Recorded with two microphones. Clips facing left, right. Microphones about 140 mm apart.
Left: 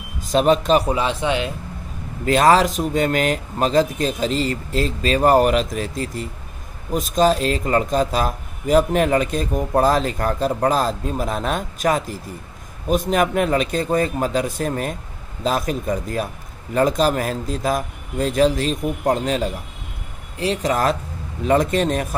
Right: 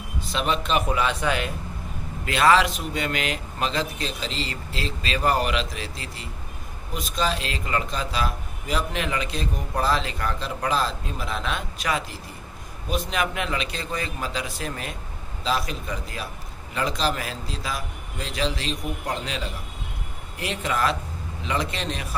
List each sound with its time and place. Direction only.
0.2 s a man's voice: 40° left (ahead or behind); by 1.5 s 25° left (ahead or behind)
2.2 s a man's voice: 40° left (ahead or behind)